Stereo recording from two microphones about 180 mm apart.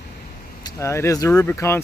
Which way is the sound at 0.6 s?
15° left (ahead or behind).